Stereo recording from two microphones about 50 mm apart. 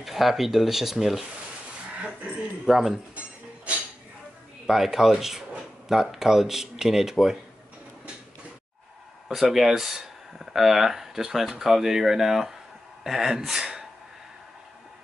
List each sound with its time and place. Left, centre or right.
0.0 s speech: centre
2.0 s speech: right
2.6 s speech: centre
4.6 s speech: centre
9.3 s speech: centre